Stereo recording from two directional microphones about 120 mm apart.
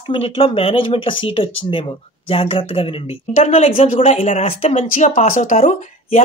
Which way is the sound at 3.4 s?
65° left (ahead or behind).